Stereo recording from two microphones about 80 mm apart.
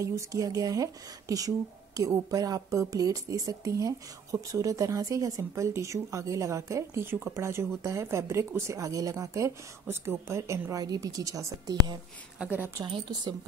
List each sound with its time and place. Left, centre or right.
0.0 s a woman's voice: right
12.4 s a woman's voice: right
12.8 s a woman's voice: right